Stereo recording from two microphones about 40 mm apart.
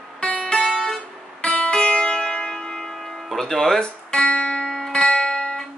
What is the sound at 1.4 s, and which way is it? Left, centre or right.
Music, left.